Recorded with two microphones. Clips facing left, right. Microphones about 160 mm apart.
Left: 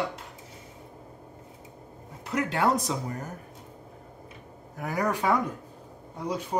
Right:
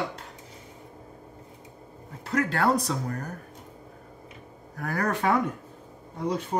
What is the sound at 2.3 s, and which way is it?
Speech, 20° left (ahead or behind).